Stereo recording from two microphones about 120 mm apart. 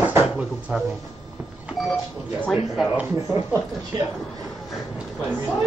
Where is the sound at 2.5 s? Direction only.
5° right (ahead or behind).